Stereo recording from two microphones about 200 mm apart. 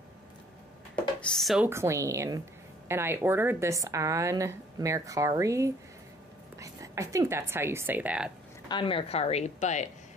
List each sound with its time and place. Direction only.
1.2 s speech: centre (ahead or behind)
1.7 s a woman's voice: 15° right (ahead or behind)
8.6 s a woman's voice: 25° left (ahead or behind)